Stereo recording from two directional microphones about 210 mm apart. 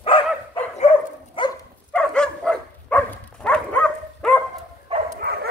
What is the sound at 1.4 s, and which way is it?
Dog, 25° left (ahead or behind).